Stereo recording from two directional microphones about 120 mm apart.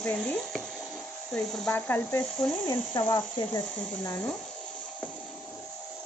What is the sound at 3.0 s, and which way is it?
Speech, 35° left (ahead or behind).